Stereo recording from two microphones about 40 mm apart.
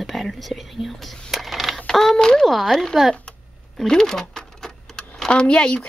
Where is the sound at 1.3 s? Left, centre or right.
Centre.